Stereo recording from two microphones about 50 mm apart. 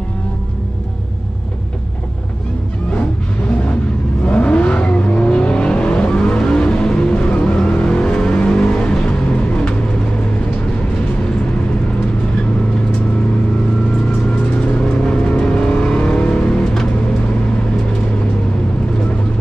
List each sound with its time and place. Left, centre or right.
4.3 s vehicle: left
14.3 s vehicle: left